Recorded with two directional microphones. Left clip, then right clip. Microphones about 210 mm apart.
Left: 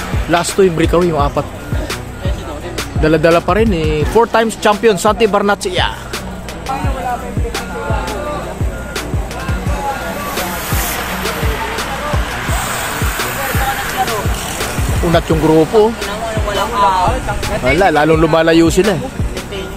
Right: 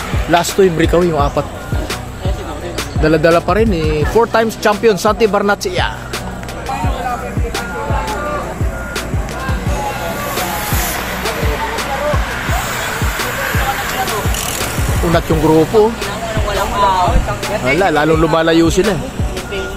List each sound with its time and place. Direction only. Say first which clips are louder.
0.3 s speech: right 1 dB; centre (ahead or behind)
3.0 s speech: even; 5° left (ahead or behind)
15.1 s speech: left 1 dB; 10° left (ahead or behind)
16.4 s music: left 1 dB; 20° left (ahead or behind)
17.6 s speech: left 2 dB; 15° left (ahead or behind)